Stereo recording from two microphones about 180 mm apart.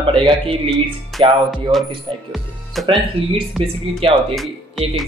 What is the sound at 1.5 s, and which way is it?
Speech, centre (ahead or behind).